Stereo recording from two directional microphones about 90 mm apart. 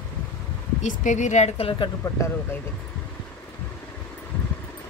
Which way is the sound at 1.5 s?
80° left.